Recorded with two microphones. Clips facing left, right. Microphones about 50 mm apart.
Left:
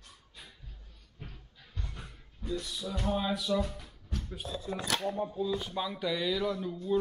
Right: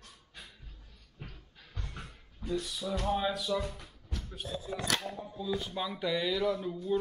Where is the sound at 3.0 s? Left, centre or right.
Centre.